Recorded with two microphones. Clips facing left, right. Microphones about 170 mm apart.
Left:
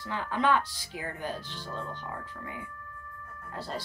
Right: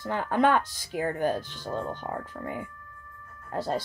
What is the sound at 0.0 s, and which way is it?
Speech, 50° right (ahead or behind).